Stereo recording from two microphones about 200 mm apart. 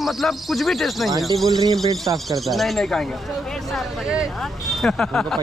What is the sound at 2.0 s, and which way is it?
Speech, 15° right (ahead or behind).